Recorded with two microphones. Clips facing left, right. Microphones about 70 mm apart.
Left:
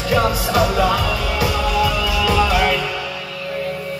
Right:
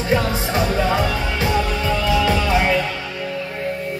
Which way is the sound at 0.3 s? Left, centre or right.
Right.